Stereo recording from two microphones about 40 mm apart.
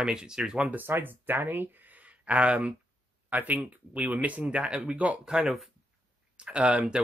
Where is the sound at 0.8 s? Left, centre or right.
Right.